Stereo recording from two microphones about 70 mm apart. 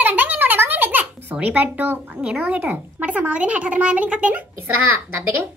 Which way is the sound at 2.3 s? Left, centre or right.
Right.